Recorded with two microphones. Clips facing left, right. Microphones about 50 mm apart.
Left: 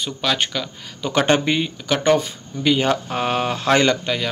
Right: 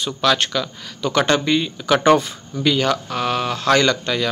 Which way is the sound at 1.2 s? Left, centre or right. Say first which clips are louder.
Even; centre.